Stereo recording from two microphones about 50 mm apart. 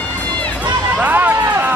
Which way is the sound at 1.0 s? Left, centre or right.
Right.